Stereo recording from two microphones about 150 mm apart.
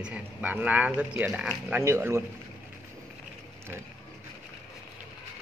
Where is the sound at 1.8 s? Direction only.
15° right (ahead or behind).